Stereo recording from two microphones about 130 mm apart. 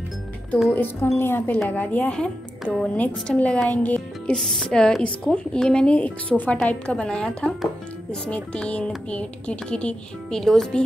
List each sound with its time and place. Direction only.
0.7 s speech: 20° left (ahead or behind)
8.5 s speech: 10° left (ahead or behind)